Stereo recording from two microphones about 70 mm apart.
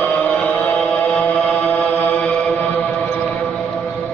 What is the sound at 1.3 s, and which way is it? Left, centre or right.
Mantra, left.